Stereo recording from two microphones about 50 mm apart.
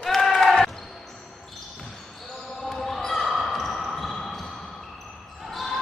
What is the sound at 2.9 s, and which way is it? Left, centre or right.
Basketball bounce, centre.